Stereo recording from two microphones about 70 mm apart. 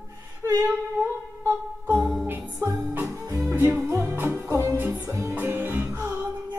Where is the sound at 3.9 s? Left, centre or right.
Right.